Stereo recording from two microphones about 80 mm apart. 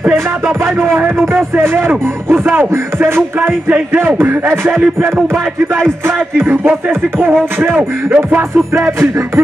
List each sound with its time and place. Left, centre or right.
0.9 s music: right
5.8 s music: right